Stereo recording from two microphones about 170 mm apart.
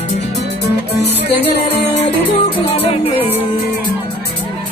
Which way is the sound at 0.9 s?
70° left (ahead or behind).